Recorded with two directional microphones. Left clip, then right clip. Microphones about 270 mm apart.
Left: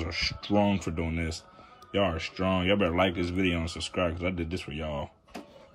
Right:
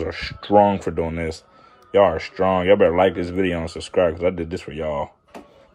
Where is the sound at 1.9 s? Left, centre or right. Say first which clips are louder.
Right 12 dB; right.